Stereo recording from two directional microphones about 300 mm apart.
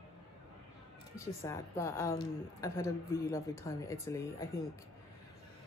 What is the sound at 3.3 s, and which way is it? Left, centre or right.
Speech, centre.